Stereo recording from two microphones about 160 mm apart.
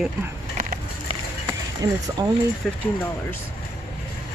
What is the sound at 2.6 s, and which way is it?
Speech, centre (ahead or behind).